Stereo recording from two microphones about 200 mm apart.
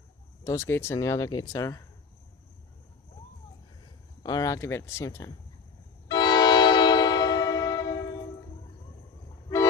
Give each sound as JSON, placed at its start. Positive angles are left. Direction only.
{"t": 0.4, "sound": "speech", "side_deg": 15}
{"t": 4.2, "sound": "speech", "side_deg": 20}
{"t": 6.0, "sound": "train horn", "side_deg": 20}